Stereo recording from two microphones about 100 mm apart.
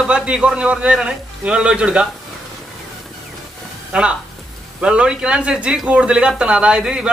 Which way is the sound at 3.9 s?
10° right (ahead or behind).